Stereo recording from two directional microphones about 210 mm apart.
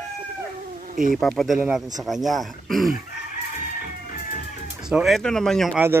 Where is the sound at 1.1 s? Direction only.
Centre (ahead or behind).